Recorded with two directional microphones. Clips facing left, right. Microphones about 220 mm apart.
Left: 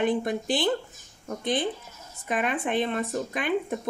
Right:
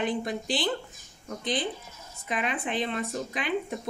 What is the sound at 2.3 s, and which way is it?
Speech, 45° left (ahead or behind).